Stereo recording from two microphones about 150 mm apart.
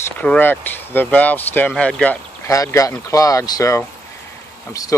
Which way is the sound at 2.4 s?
20° left (ahead or behind).